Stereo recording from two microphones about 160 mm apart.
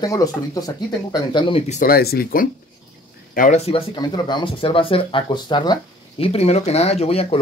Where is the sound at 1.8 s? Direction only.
75° left (ahead or behind).